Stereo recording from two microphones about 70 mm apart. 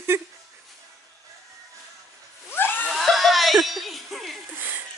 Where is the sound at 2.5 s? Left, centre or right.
Left.